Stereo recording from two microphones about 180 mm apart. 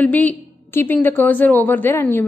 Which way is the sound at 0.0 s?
10° left (ahead or behind).